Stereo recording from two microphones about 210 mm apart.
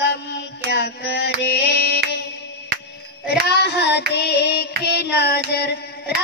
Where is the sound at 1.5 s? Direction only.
55° left (ahead or behind).